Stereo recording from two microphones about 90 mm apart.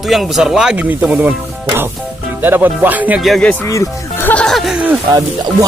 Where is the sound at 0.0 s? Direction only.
Centre (ahead or behind).